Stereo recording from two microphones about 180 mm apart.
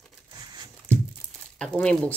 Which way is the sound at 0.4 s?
20° right (ahead or behind).